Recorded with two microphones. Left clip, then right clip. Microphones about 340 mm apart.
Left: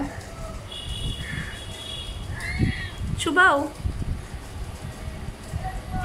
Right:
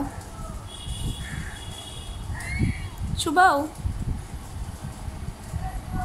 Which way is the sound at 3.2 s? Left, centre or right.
Centre.